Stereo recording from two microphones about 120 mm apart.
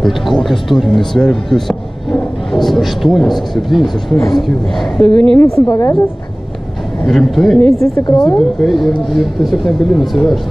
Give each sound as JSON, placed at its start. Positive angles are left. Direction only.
{"t": 0.0, "sound": "speech", "side_deg": 0}
{"t": 5.7, "sound": "speech", "side_deg": 25}
{"t": 7.1, "sound": "speech", "side_deg": 0}
{"t": 7.8, "sound": "a woman's voice", "side_deg": 35}
{"t": 8.4, "sound": "speech", "side_deg": 0}